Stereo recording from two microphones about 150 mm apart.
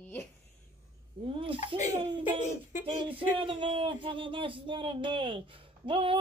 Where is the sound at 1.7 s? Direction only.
35° right (ahead or behind).